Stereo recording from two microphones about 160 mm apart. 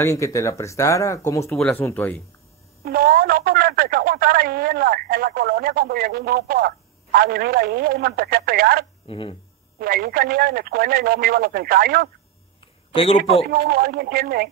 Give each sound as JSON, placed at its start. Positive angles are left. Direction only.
{"t": 0.0, "sound": "speech", "side_deg": 20}
{"t": 2.8, "sound": "speech", "side_deg": -70}
{"t": 9.0, "sound": "speech", "side_deg": 35}
{"t": 9.8, "sound": "speech", "side_deg": -65}
{"t": 12.9, "sound": "a man's voice", "side_deg": 40}
{"t": 13.5, "sound": "speech", "side_deg": -70}